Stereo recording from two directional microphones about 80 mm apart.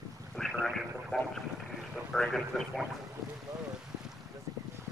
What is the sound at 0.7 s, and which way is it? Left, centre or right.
Speech, centre.